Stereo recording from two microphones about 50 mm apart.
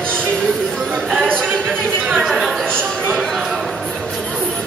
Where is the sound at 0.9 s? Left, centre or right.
Right; by 2.6 s centre.